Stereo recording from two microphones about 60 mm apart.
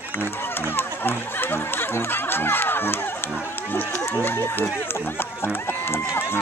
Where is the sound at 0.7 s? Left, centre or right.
Left.